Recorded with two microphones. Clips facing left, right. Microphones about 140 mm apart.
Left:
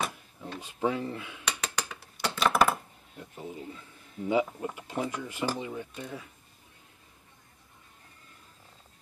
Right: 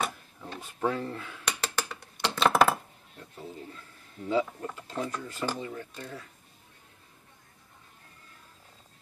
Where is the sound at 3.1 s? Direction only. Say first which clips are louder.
Left 2 dB; 15° left (ahead or behind).